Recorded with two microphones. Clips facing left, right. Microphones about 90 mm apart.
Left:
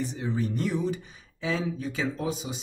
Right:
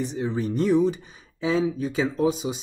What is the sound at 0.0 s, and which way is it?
Speech, 20° right (ahead or behind).